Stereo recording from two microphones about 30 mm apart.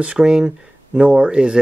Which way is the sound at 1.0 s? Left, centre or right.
Right.